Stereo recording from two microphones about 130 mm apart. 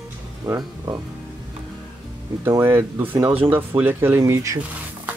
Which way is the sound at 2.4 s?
20° right (ahead or behind).